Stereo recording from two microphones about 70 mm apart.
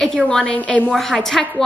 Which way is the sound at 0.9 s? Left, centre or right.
Centre.